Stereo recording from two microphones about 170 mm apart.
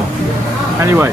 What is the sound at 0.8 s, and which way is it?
Speech, 15° right (ahead or behind).